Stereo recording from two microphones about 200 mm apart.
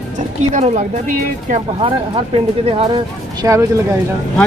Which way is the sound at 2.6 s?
30° right (ahead or behind).